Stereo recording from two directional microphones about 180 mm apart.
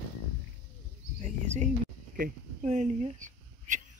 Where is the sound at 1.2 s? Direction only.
40° right (ahead or behind).